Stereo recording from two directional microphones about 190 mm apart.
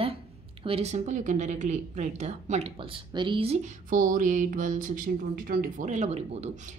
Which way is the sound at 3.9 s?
45° right (ahead or behind).